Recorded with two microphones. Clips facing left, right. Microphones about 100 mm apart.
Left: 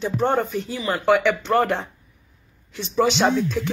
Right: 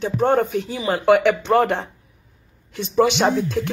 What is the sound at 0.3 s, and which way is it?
Speech, 60° right (ahead or behind).